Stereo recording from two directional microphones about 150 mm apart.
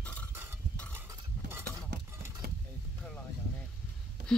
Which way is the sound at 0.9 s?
15° right (ahead or behind).